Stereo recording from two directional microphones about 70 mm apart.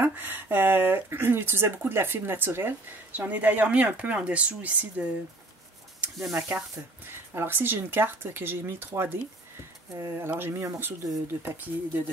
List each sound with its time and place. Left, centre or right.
0.0 s speech: right
6.1 s speech: centre
7.3 s speech: right
9.9 s speech: right